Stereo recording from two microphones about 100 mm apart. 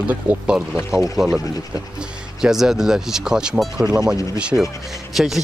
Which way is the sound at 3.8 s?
40° right (ahead or behind).